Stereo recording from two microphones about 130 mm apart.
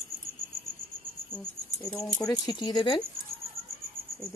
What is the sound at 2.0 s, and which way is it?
Speech, 25° left (ahead or behind).